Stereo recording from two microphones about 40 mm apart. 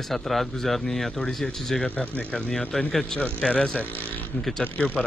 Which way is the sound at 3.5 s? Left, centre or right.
Left.